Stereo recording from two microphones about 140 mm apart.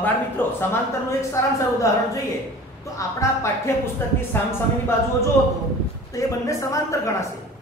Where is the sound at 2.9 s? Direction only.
20° left (ahead or behind).